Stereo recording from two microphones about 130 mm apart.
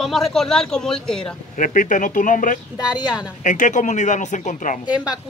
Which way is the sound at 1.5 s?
90° left.